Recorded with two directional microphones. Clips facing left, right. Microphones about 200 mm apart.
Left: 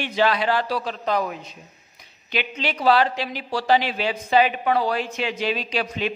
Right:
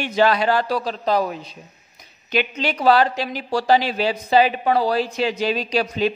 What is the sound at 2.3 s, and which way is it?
A woman's voice, 45° right (ahead or behind).